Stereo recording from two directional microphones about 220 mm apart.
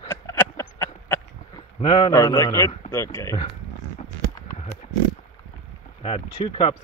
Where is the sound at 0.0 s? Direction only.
10° left (ahead or behind).